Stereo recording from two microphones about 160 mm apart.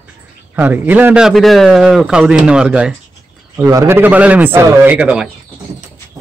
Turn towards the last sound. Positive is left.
turn(degrees=-5)  # may be behind; listen again after turning